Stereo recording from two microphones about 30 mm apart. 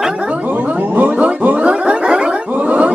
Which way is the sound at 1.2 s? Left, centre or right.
Right.